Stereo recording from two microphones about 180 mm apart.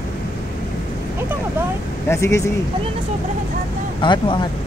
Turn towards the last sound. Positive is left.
turn(degrees=25)  # may be behind; listen again after turning